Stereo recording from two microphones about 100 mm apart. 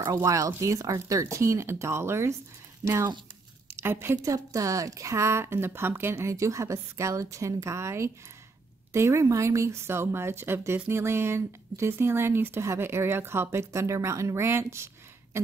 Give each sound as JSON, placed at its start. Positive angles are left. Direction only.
{"t": 0.0, "sound": "speech", "side_deg": -30}
{"t": 3.7, "sound": "a woman's voice", "side_deg": -20}
{"t": 4.2, "sound": "speech", "side_deg": -35}
{"t": 15.3, "sound": "a sound", "side_deg": -25}